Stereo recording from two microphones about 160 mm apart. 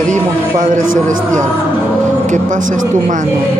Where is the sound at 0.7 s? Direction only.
50° right (ahead or behind).